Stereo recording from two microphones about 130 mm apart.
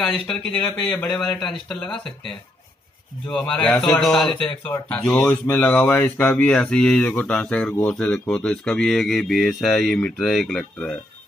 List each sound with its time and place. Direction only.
0.0 s speech: 5° left (ahead or behind)